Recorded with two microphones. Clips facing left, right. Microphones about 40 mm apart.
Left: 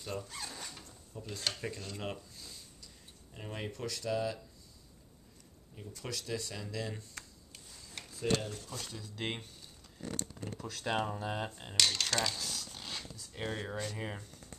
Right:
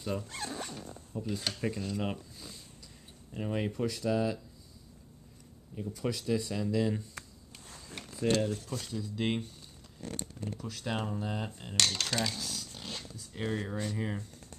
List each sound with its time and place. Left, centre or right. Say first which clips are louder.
0.0 s speech: right 5 dB; centre
0.3 s zipper: right 6 dB; right
0.7 s speech: right 8 dB; centre
5.8 s speech: right 8 dB; centre
8.3 s speech: right 4 dB; centre
8.7 s speech: right 6 dB; centre
10.4 s speech: right 2 dB; left
11.8 s speech: even; centre
12.7 s dog: right 1 dB; left
13.3 s speech: right 4 dB; centre